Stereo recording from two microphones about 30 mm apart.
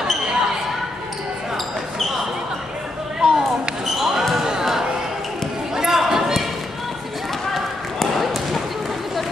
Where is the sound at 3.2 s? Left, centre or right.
Right.